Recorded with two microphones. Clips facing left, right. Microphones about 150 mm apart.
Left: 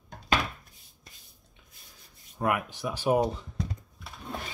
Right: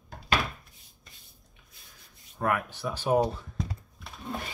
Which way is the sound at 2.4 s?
15° left (ahead or behind).